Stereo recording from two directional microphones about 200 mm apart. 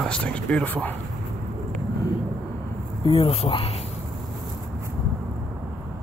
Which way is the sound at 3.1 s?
30° left (ahead or behind).